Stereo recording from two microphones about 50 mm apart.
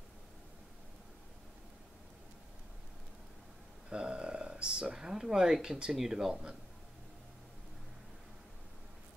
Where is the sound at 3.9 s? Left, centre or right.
Centre.